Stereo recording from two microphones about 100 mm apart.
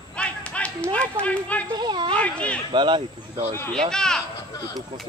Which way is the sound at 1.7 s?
45° right (ahead or behind).